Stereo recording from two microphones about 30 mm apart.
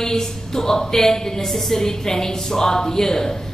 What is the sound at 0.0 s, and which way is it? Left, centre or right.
A woman's voice, centre.